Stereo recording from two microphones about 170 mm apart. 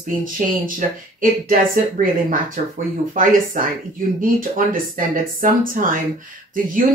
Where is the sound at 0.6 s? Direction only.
55° right (ahead or behind).